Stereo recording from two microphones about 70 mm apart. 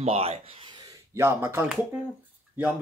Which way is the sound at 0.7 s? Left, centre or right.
Right.